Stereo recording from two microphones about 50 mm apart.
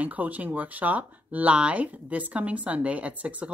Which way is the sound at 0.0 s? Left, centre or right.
Right.